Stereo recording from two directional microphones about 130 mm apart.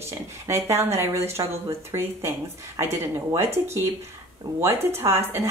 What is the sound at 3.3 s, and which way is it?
Speech, 20° right (ahead or behind).